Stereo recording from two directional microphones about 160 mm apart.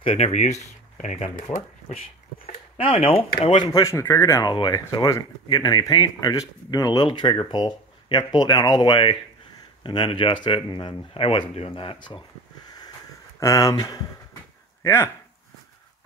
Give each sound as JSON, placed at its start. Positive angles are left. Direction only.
{"t": 0.0, "sound": "speech", "side_deg": 40}
{"t": 3.8, "sound": "speech", "side_deg": 20}
{"t": 13.4, "sound": "speech", "side_deg": 20}